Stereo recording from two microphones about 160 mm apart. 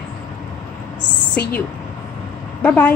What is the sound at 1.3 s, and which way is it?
Speech, 10° left (ahead or behind).